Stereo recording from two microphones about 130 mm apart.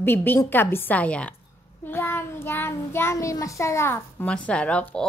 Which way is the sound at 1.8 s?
15° left (ahead or behind).